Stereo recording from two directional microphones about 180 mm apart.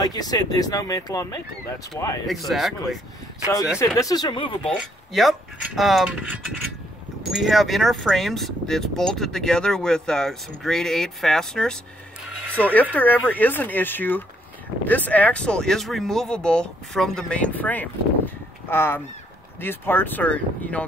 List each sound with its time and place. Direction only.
0.0 s speech: 20° left (ahead or behind)
2.2 s speech: centre (ahead or behind)
3.8 s speech: 20° left (ahead or behind)
4.6 s speech: centre (ahead or behind)